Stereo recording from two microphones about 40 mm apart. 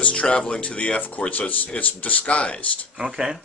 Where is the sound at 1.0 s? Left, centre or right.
Left.